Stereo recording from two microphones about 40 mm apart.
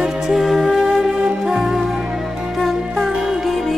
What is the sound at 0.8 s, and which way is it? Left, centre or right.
Music, centre.